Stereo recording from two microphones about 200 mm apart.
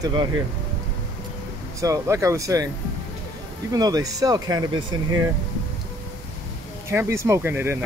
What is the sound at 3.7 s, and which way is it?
Speech, 20° right (ahead or behind).